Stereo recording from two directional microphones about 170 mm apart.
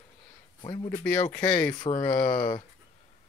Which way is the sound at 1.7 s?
40° left (ahead or behind).